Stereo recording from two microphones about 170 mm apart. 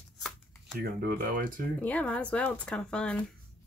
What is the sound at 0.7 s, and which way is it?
Speech, 60° right (ahead or behind).